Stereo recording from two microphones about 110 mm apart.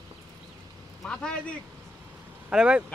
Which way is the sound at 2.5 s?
10° right (ahead or behind).